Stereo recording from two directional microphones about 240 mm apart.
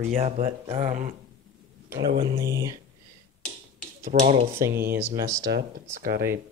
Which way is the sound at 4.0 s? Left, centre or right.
Right.